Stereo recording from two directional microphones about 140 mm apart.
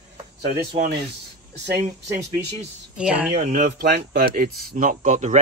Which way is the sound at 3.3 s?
55° right (ahead or behind).